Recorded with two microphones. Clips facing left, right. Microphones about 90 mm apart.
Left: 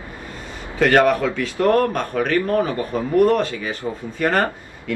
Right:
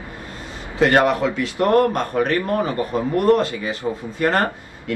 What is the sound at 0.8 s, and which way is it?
Speech, 15° right (ahead or behind).